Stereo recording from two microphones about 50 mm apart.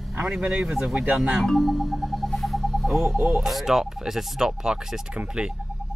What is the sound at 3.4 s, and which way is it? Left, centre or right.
Speech, centre.